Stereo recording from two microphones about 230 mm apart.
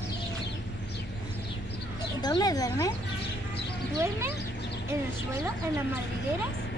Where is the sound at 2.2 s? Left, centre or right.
Centre.